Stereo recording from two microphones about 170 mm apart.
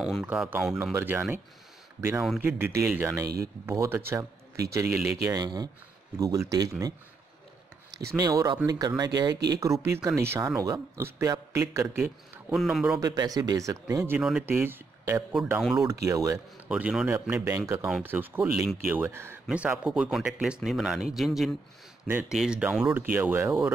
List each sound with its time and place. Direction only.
0.0 s speech: centre (ahead or behind)
0.9 s a man's voice: 15° right (ahead or behind)
8.2 s speech: 20° right (ahead or behind)
12.5 s speech: centre (ahead or behind)
13.0 s speech: 20° right (ahead or behind)
15.3 s speech: centre (ahead or behind)
16.1 s speech: 20° right (ahead or behind)
16.6 s speech: 5° right (ahead or behind)